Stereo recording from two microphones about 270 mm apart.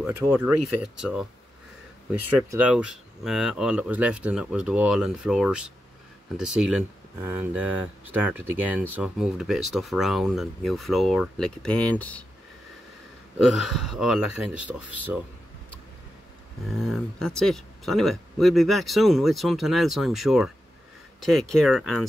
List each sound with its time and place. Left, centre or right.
0.0 s speech: centre
2.2 s speech: centre
13.4 s speech: centre
16.7 s speech: centre